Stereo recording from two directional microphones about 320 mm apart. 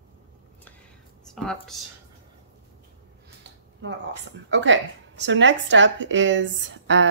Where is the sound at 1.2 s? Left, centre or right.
Centre.